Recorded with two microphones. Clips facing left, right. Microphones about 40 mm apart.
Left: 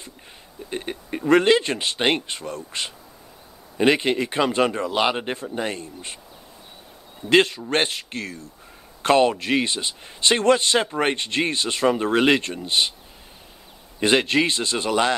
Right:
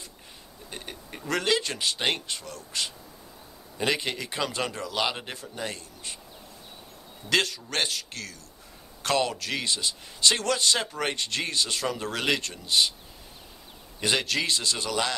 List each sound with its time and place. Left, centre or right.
0.7 s a man's voice: left
7.2 s a man's voice: left
14.0 s a man's voice: left